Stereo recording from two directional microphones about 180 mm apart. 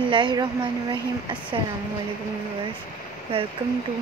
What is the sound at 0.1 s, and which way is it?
Speech, 25° right (ahead or behind).